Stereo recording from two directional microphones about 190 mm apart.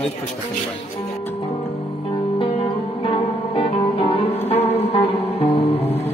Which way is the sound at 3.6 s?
30° left (ahead or behind).